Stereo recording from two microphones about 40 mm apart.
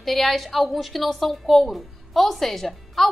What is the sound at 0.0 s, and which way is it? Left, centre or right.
A woman's voice, centre.